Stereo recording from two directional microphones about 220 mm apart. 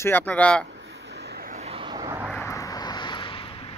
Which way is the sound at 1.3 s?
40° right (ahead or behind).